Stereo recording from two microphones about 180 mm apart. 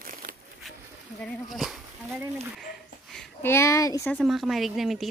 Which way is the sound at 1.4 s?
Centre (ahead or behind).